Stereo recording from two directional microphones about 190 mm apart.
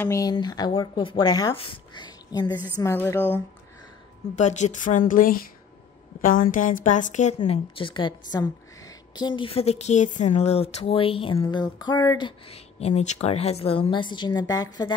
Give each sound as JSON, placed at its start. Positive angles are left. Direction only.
{"t": 0.0, "sound": "speech", "side_deg": 15}
{"t": 4.4, "sound": "speech", "side_deg": 40}